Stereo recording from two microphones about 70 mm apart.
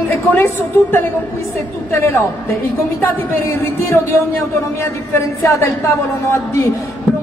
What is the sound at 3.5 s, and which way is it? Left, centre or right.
Speech, left.